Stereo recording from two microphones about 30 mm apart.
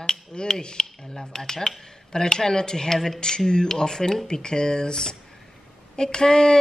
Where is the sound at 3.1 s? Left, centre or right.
Left.